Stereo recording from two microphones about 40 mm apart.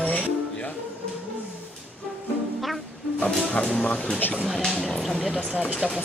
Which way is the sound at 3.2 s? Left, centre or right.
Left.